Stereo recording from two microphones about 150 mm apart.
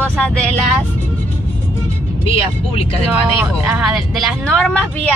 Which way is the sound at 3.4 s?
10° right (ahead or behind).